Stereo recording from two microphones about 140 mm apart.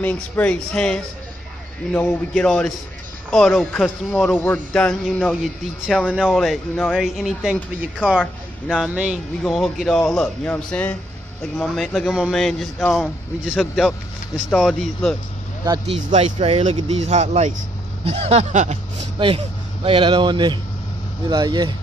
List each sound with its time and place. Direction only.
0.0 s speech: 10° left (ahead or behind)
4.1 s speech: 15° left (ahead or behind)
5.3 s speech: 5° right (ahead or behind)
15.9 s speech: 50° right (ahead or behind)
19.1 s speech: 40° right (ahead or behind)